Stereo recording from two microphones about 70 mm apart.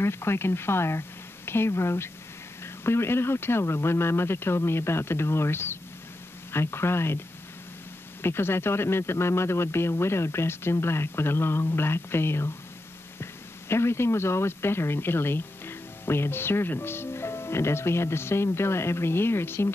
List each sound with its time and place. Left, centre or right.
0.0 s speech: left